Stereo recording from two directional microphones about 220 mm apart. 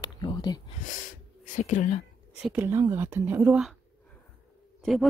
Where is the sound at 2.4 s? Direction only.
10° right (ahead or behind).